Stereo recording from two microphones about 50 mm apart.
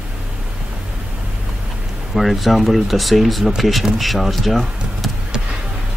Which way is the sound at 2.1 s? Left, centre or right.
Centre.